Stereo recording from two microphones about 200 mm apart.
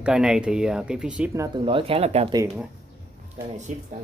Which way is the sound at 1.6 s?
25° right (ahead or behind).